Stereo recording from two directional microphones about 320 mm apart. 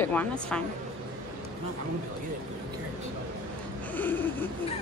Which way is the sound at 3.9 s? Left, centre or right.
Centre.